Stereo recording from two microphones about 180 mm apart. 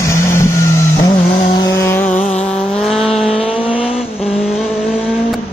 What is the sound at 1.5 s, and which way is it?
Chainsaw, 20° left (ahead or behind).